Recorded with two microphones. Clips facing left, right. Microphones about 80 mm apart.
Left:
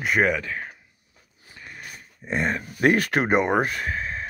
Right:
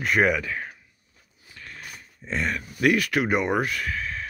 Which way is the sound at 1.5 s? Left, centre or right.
Centre.